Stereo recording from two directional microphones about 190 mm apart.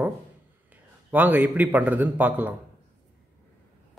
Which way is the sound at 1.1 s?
10° right (ahead or behind).